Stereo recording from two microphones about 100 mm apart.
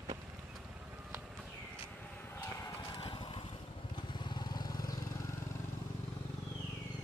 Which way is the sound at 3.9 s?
50° left (ahead or behind).